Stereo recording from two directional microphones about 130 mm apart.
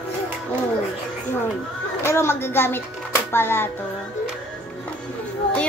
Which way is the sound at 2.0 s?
20° left (ahead or behind).